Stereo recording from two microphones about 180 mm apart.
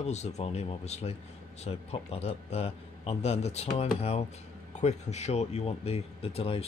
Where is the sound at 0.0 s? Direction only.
40° left (ahead or behind).